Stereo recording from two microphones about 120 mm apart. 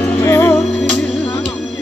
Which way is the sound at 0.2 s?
20° left (ahead or behind).